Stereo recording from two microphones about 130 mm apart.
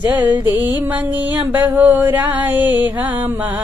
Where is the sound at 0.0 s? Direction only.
15° right (ahead or behind).